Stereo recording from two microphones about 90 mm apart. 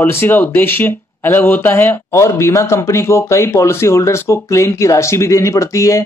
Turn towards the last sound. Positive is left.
turn(degrees=35)  # may be behind; listen again after turning